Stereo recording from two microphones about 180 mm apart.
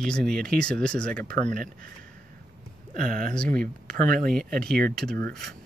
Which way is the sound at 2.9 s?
45° right (ahead or behind).